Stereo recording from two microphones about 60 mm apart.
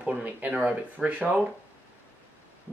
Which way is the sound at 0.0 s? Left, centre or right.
Right.